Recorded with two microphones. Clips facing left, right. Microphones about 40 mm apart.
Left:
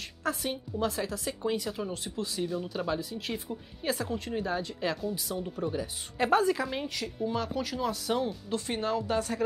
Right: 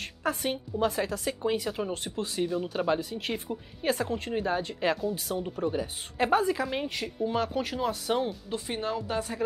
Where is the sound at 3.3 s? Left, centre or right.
Centre.